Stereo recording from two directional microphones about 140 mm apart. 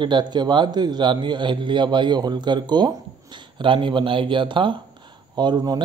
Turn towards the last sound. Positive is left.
turn(degrees=-30)  # may be behind; listen again after turning